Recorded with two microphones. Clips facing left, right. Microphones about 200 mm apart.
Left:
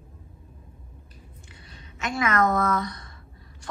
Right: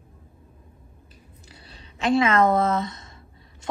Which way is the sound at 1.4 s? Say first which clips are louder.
Right 4 dB; 35° right (ahead or behind).